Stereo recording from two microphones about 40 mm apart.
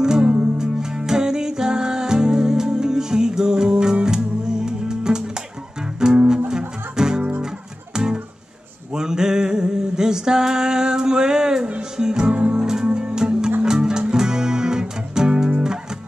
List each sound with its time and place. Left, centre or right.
0.0 s music: right
0.6 s music: centre